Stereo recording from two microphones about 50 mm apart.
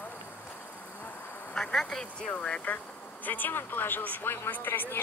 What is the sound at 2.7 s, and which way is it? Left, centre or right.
Vehicle, left.